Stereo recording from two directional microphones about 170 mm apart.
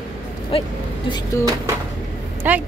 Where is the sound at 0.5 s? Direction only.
35° left (ahead or behind).